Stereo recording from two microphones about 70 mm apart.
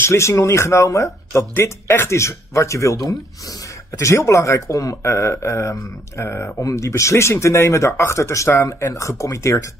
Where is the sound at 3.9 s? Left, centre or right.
Left.